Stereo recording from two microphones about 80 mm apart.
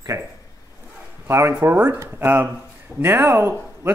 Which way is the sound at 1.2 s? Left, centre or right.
Right.